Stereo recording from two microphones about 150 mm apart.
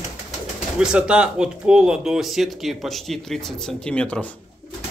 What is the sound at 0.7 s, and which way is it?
Speech, 5° right (ahead or behind).